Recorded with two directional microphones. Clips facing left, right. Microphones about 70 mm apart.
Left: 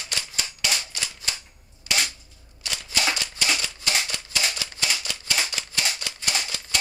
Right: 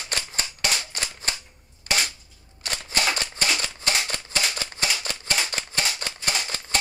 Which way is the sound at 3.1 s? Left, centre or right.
Right.